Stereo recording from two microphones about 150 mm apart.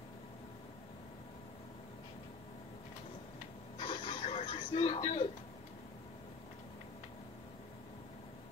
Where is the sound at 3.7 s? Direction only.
35° left (ahead or behind).